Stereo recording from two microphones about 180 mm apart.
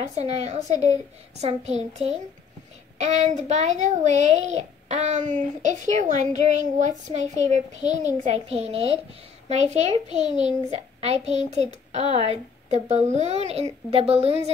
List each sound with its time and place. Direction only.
0.1 s a child's voice: 40° right (ahead or behind)